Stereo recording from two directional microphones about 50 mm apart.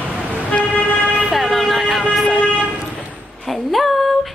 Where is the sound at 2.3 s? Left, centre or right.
Left.